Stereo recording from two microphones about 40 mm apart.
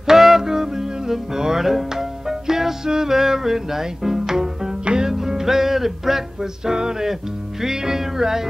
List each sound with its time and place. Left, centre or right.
0.0 s music: centre